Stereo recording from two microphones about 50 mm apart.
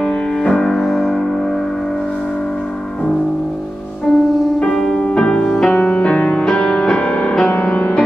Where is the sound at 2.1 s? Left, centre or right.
Left; by 4.6 s centre.